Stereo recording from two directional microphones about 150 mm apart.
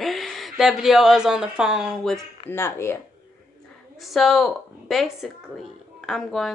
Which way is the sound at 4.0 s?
Centre (ahead or behind).